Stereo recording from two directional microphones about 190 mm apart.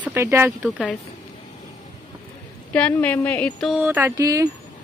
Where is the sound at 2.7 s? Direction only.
10° left (ahead or behind).